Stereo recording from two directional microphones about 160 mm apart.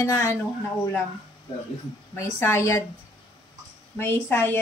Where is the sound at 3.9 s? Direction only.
15° left (ahead or behind).